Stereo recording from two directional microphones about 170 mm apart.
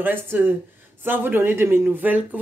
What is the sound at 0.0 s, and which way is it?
Speech, 10° right (ahead or behind).